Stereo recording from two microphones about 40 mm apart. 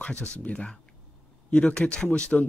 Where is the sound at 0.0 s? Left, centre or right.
Left.